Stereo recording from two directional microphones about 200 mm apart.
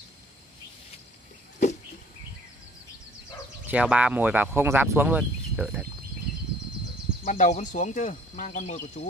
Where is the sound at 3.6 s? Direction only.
5° right (ahead or behind).